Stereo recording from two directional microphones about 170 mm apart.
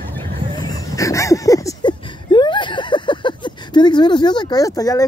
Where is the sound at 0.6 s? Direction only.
20° left (ahead or behind).